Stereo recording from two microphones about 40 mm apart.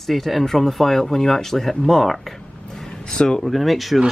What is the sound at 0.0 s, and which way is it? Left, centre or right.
Speech, centre.